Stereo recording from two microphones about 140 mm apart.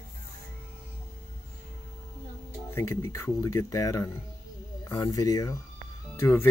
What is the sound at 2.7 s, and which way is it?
Speech, 20° left (ahead or behind).